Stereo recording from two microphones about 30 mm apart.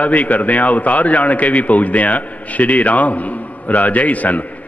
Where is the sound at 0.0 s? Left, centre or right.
Left.